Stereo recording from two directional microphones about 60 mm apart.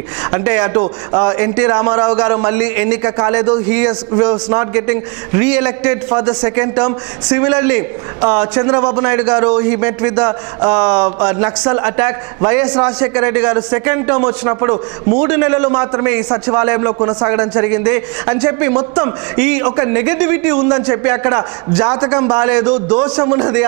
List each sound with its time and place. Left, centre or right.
0.2 s a man's voice: centre